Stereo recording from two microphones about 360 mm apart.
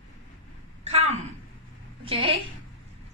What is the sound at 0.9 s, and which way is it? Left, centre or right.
A woman's voice, centre.